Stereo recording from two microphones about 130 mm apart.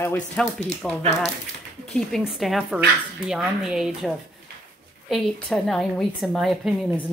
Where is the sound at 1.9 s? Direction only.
Centre (ahead or behind).